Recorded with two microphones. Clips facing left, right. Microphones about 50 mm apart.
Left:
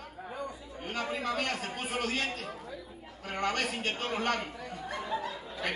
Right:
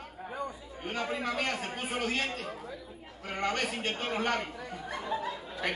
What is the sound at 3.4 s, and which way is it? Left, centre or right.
Speech, centre.